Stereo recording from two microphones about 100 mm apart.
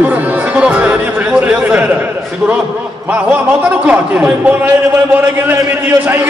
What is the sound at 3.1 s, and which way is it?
Speech, 15° right (ahead or behind).